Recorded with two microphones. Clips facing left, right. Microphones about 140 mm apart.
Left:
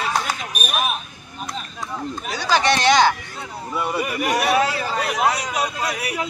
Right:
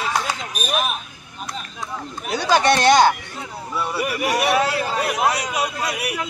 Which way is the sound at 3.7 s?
15° left (ahead or behind).